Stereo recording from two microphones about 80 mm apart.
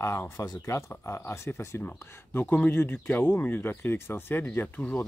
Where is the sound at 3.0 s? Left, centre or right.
Centre.